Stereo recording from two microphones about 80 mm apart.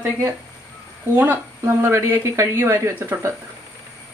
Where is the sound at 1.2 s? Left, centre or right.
Right.